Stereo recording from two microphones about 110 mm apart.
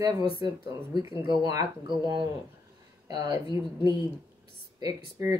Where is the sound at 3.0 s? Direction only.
35° right (ahead or behind).